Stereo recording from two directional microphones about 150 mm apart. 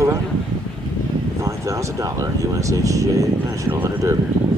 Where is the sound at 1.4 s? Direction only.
20° right (ahead or behind).